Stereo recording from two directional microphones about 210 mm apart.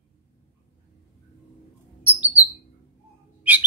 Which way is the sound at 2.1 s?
5° right (ahead or behind).